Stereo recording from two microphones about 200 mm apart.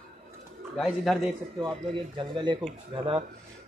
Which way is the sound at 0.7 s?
Centre (ahead or behind).